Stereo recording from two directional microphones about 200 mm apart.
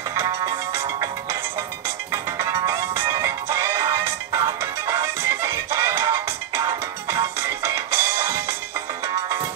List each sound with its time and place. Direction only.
0.1 s music: 15° right (ahead or behind)